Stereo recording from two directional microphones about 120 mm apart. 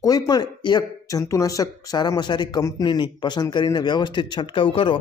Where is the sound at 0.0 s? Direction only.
35° left (ahead or behind).